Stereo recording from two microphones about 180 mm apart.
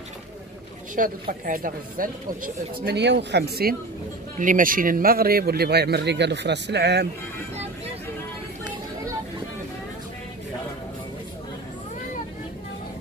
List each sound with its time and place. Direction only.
0.9 s speech: 50° right (ahead or behind)
4.4 s speech: 50° right (ahead or behind); by 7.1 s 70° right (ahead or behind)